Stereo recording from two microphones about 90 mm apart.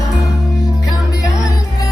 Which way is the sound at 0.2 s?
Centre (ahead or behind).